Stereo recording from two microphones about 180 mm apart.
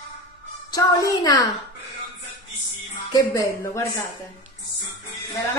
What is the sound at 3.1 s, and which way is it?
Speech, 15° left (ahead or behind).